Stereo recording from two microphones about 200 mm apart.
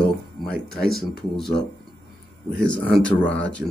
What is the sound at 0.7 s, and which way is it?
Speech, centre (ahead or behind).